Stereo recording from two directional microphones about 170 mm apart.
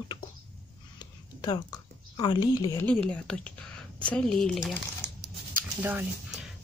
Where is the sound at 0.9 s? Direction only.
25° left (ahead or behind).